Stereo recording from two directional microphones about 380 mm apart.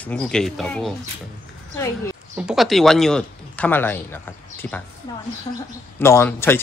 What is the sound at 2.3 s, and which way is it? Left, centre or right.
Speech, centre.